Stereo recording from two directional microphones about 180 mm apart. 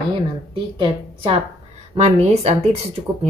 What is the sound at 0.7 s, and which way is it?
Speech, 30° right (ahead or behind).